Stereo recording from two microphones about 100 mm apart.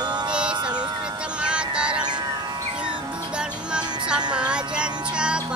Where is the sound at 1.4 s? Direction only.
10° right (ahead or behind).